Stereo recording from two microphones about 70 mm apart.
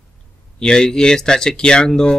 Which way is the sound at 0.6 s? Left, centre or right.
Centre.